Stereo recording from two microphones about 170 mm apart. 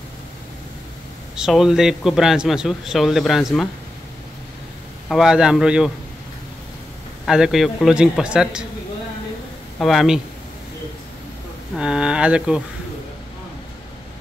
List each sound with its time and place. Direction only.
1.3 s a man's voice: 5° right (ahead or behind)
5.0 s a man's voice: centre (ahead or behind)
7.2 s a man's voice: 5° right (ahead or behind)
9.8 s a man's voice: centre (ahead or behind)
11.7 s a man's voice: 5° right (ahead or behind)